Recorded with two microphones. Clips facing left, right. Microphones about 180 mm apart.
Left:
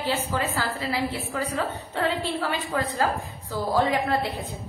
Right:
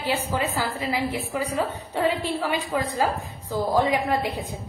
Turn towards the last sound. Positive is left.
turn(degrees=-15)  # may be behind; listen again after turning